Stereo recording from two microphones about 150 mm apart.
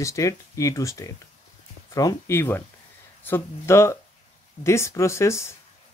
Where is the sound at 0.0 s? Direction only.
20° left (ahead or behind).